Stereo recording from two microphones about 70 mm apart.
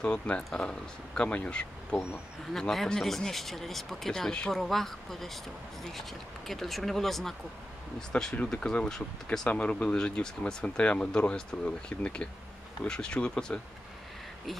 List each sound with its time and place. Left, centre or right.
0.0 s speech: centre
2.5 s speech: centre
9.5 s speech: centre